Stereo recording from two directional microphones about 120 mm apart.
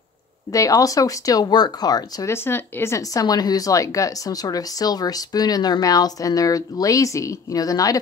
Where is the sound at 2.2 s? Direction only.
20° left (ahead or behind).